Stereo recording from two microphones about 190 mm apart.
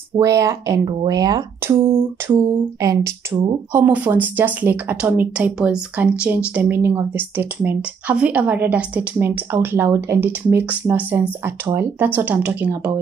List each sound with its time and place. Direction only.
0.2 s speech: 15° right (ahead or behind)